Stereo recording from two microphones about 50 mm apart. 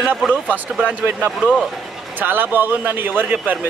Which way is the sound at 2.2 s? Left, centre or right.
Right.